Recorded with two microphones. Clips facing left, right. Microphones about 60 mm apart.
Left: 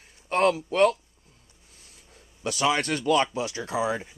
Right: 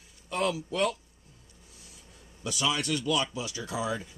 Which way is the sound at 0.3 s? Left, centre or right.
Left.